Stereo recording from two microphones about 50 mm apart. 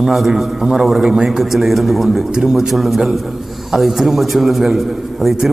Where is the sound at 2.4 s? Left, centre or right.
Centre.